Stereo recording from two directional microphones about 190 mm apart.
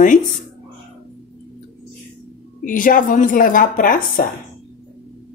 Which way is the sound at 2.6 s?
45° left (ahead or behind).